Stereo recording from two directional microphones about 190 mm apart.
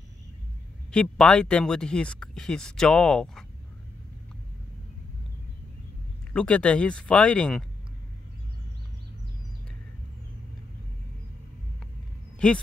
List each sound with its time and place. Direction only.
0.9 s speech: 5° left (ahead or behind)
6.3 s speech: 5° left (ahead or behind)
12.4 s speech: 5° left (ahead or behind)